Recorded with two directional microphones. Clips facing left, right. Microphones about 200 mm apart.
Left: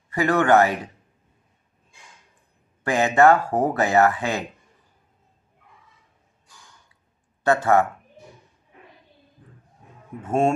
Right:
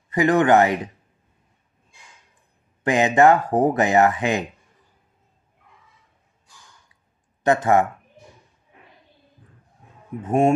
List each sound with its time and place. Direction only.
0.1 s speech: 20° right (ahead or behind)
2.8 s speech: 20° right (ahead or behind)
7.4 s speech: 20° right (ahead or behind)
10.2 s speech: 15° right (ahead or behind)